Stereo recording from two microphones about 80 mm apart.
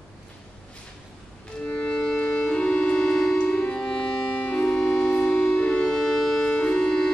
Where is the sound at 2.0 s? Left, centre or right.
Centre.